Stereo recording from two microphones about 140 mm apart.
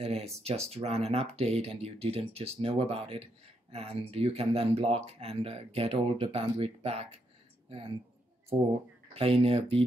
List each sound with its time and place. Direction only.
0.0 s speech: 50° right (ahead or behind)
9.1 s speech: 40° right (ahead or behind)